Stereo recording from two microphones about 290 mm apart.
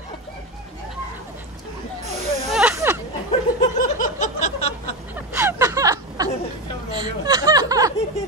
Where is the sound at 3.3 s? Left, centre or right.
Left.